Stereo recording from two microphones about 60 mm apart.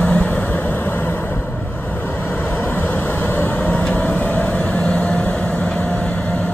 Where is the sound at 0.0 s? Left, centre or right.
Left.